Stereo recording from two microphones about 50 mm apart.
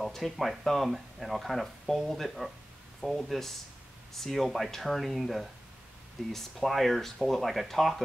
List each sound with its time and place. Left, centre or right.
0.0 s speech: centre